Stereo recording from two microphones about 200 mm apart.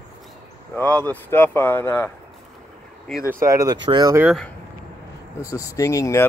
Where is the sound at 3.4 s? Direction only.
15° right (ahead or behind).